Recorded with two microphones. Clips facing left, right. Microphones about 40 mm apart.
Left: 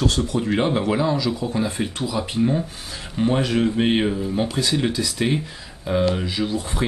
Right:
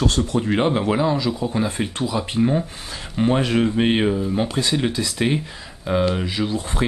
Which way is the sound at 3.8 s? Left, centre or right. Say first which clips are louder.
Right 1 dB; centre.